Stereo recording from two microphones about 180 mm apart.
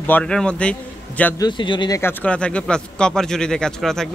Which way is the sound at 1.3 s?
25° left (ahead or behind).